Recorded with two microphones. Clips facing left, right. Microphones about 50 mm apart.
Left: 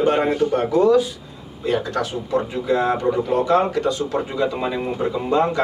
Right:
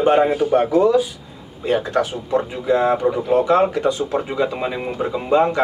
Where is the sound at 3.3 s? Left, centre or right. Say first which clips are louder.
Right 4 dB; centre.